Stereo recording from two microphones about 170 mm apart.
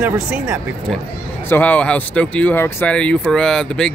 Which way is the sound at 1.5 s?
10° left (ahead or behind).